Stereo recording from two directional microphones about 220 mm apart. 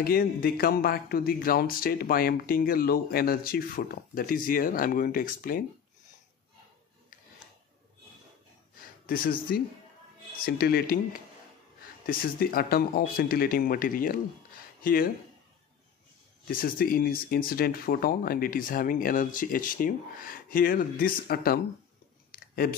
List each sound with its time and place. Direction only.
0.0 s speech: 45° left (ahead or behind)
9.0 s speech: 40° left (ahead or behind)
12.1 s speech: 40° left (ahead or behind)
16.4 s speech: 40° left (ahead or behind)
22.3 s a sound: 40° left (ahead or behind)